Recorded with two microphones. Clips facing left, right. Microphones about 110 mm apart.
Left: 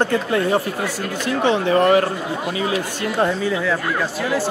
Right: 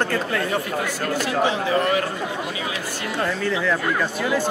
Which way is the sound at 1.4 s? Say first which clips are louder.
Left 6 dB; 60° left (ahead or behind).